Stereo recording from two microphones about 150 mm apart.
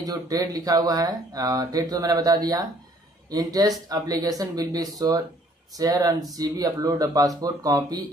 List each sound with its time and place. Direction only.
0.0 s speech: 25° right (ahead or behind)